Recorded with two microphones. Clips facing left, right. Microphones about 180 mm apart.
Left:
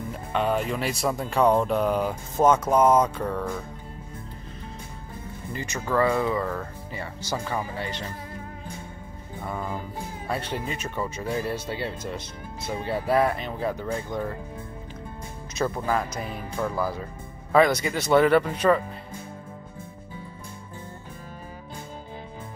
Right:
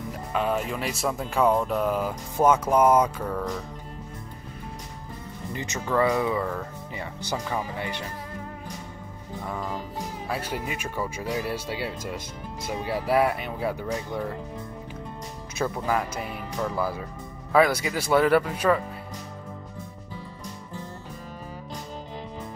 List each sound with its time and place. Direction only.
0.3 s speech: centre (ahead or behind)
5.5 s speech: 20° right (ahead or behind)
9.4 s music: 10° left (ahead or behind)
10.2 s speech: 5° right (ahead or behind)
15.6 s speech: 10° right (ahead or behind)